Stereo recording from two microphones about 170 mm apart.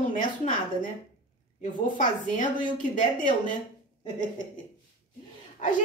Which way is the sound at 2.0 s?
50° left (ahead or behind).